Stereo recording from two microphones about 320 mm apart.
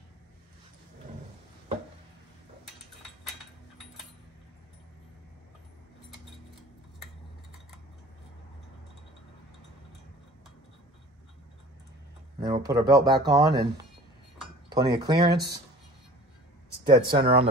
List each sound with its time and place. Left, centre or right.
12.4 s speech: centre
14.7 s speech: centre
16.8 s speech: centre